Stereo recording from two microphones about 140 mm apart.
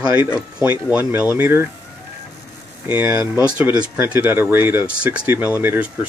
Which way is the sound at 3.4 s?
10° right (ahead or behind).